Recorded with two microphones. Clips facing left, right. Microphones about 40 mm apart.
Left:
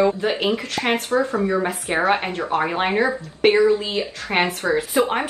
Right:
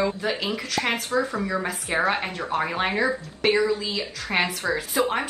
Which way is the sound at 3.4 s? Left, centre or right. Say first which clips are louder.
Left 6 dB; left.